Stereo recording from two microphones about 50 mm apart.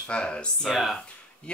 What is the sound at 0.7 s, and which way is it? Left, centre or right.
Speech, centre.